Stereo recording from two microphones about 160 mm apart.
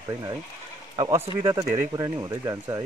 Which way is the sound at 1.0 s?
20° right (ahead or behind).